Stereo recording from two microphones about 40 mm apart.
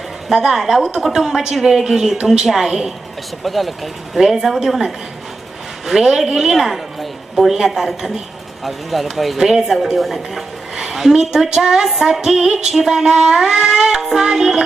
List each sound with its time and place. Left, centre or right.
0.3 s a woman's voice: centre
9.4 s a woman's voice: centre
13.1 s cat: right
13.4 s cat: centre
14.0 s a woman's voice: centre